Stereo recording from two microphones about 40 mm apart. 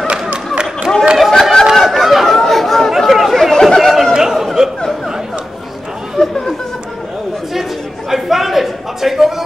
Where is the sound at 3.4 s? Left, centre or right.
Centre.